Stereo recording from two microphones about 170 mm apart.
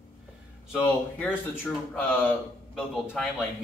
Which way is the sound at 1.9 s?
10° left (ahead or behind).